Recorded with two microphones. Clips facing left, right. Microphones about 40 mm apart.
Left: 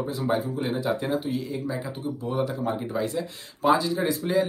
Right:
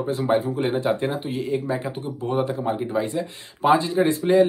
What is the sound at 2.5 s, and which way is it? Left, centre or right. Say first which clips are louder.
Speech: right 4 dB; right.